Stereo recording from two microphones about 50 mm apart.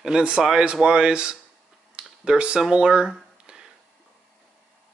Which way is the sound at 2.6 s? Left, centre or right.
Centre.